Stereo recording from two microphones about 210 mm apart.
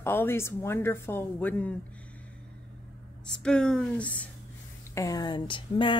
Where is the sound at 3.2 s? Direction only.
5° left (ahead or behind).